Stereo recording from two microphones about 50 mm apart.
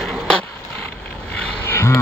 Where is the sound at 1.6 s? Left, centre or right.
Left.